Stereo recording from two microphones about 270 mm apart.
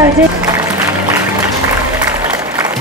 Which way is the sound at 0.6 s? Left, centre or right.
Centre.